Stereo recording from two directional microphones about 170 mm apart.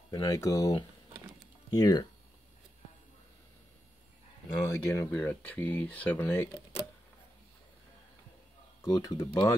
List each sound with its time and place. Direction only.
0.1 s speech: 20° left (ahead or behind)
4.5 s speech: 20° left (ahead or behind)
8.8 s speech: 20° left (ahead or behind)